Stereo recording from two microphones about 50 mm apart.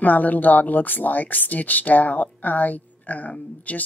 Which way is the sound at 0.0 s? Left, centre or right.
Left.